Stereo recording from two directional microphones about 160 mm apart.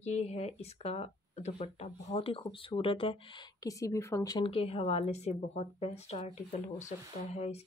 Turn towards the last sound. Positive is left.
turn(degrees=40)  # may be behind; listen again after turning